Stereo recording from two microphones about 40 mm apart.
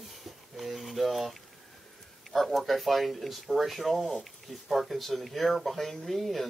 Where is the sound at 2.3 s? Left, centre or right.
Centre.